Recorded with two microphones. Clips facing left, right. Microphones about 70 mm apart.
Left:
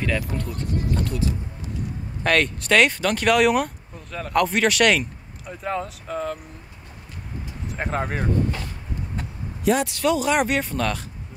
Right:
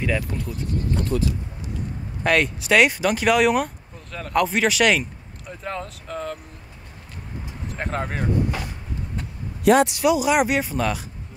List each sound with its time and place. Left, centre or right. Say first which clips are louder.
0.0 s speech: even; centre
1.1 s speech: right 3 dB; right
2.2 s speech: right 1 dB; centre
7.7 s speech: left 1 dB; centre
9.8 s speech: right 2 dB; centre